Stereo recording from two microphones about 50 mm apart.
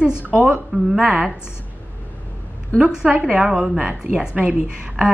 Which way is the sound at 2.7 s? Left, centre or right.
Right.